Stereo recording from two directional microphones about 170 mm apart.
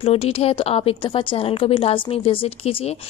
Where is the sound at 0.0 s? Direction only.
35° left (ahead or behind).